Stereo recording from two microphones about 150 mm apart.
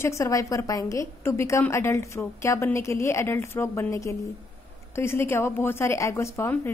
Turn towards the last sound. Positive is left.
turn(degrees=15)  # may be behind; listen again after turning